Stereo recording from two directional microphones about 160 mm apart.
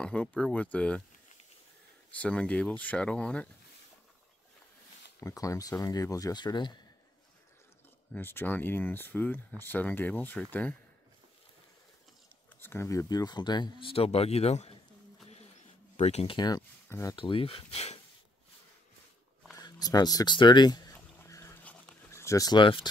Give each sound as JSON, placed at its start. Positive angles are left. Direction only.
{"t": 0.0, "sound": "speech", "side_deg": 10}
{"t": 2.1, "sound": "speech", "side_deg": 5}
{"t": 5.2, "sound": "speech", "side_deg": 20}
{"t": 8.1, "sound": "speech", "side_deg": 15}
{"t": 12.5, "sound": "speech", "side_deg": 15}
{"t": 16.0, "sound": "speech", "side_deg": 40}
{"t": 16.3, "sound": "speech", "side_deg": 25}
{"t": 17.2, "sound": "speech", "side_deg": 35}
{"t": 19.5, "sound": "speech", "side_deg": 25}
{"t": 21.2, "sound": "a sound", "side_deg": 15}